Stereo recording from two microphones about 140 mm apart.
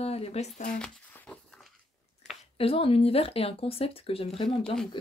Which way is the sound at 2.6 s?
45° left (ahead or behind).